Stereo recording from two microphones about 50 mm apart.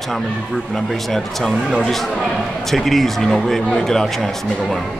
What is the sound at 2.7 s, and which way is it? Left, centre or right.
Speech, centre.